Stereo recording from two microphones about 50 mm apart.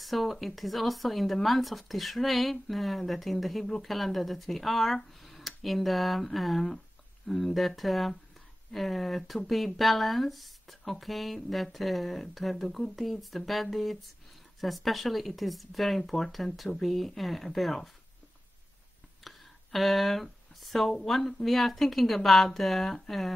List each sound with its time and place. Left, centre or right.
0.0 s speech: centre
19.2 s a sound: centre
20.9 s speech: centre